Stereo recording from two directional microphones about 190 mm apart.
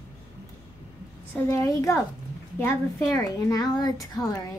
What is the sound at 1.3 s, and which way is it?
A child's voice, 15° left (ahead or behind).